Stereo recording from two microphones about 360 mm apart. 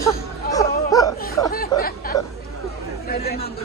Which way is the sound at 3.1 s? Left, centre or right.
Left.